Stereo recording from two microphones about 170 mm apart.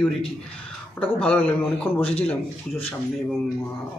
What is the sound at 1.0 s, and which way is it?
Speech, 10° left (ahead or behind).